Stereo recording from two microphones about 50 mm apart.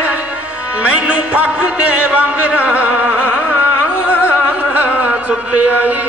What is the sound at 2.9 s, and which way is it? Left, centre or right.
Music, right.